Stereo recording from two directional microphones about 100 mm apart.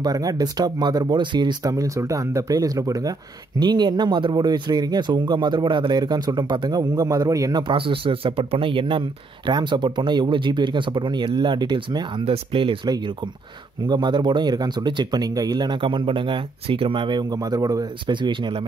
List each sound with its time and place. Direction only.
0.0 s speech: 40° right (ahead or behind)
7.6 s speech: 60° right (ahead or behind)
13.8 s speech: 50° right (ahead or behind)
18.0 s speech: 55° right (ahead or behind)